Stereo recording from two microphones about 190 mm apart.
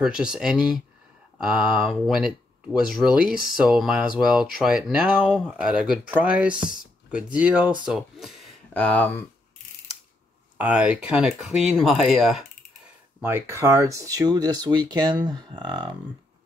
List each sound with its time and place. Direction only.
0.0 s speech: 5° right (ahead or behind)
10.6 s speech: 5° right (ahead or behind)
13.2 s speech: 15° right (ahead or behind)